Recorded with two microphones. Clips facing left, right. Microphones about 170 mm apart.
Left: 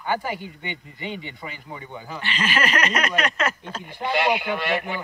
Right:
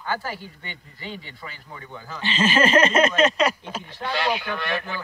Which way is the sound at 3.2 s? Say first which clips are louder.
Right 5 dB; 20° right (ahead or behind).